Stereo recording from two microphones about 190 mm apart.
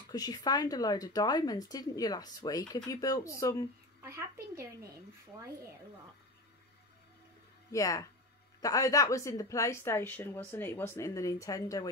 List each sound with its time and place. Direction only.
0.1 s speech: 20° left (ahead or behind)
4.0 s a child's voice: 15° right (ahead or behind)
7.7 s a woman's voice: 15° left (ahead or behind)